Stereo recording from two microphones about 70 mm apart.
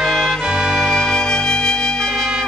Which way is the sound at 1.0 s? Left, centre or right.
Centre.